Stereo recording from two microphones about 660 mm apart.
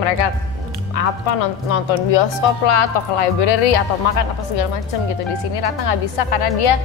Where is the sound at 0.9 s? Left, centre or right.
Left.